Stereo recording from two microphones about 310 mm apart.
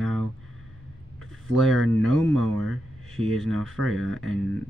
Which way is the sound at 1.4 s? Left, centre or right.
Centre.